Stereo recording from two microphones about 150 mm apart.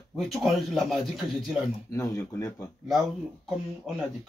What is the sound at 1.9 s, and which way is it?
Speech, 20° left (ahead or behind).